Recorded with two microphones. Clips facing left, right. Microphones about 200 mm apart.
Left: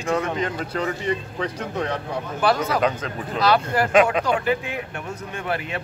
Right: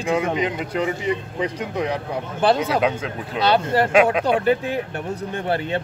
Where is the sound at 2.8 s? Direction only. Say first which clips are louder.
Right 1 dB; 5° right (ahead or behind).